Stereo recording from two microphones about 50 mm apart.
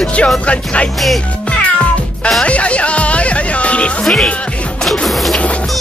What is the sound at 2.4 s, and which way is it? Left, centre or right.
Music, left.